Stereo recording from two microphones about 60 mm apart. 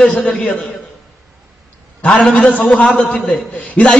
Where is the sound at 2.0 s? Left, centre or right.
Left.